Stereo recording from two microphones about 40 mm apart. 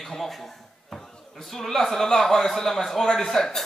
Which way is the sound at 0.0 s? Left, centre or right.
Centre.